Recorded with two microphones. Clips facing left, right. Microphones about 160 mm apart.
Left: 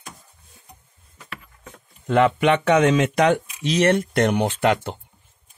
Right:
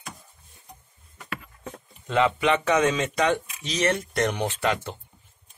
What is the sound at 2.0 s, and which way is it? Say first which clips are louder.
Speech: left 5 dB; 55° left (ahead or behind).